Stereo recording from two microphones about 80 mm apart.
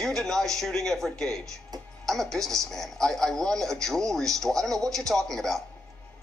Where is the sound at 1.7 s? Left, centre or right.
Right.